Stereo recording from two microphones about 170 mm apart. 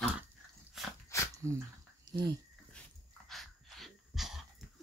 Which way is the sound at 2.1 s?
25° right (ahead or behind).